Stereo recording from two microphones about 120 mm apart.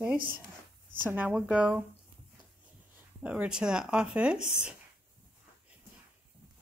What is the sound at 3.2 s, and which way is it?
Speech, 10° right (ahead or behind).